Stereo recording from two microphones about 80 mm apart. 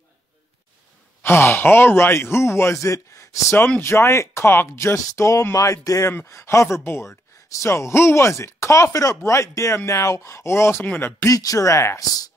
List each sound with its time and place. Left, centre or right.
1.2 s speech: left
11.3 s speech: left